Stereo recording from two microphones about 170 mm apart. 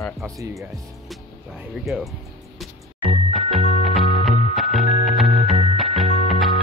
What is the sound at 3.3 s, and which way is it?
Music, centre (ahead or behind).